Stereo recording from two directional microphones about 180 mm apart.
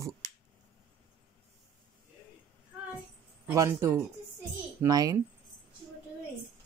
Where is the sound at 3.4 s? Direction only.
15° right (ahead or behind).